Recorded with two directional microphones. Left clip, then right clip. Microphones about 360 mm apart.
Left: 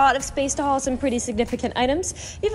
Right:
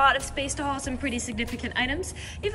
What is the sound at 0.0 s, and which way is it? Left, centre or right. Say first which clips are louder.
A woman's voice: left 3 dB; centre.